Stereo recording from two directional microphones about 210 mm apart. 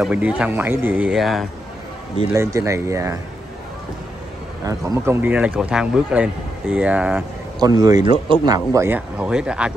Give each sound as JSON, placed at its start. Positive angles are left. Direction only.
{"t": 0.0, "sound": "speech", "side_deg": -5}
{"t": 2.3, "sound": "a man's voice", "side_deg": -15}
{"t": 4.6, "sound": "a man's voice", "side_deg": -15}
{"t": 7.6, "sound": "a man's voice", "side_deg": -15}